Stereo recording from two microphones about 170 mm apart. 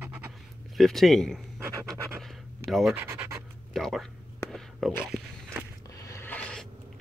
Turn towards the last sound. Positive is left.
turn(degrees=5)  # may be behind; listen again after turning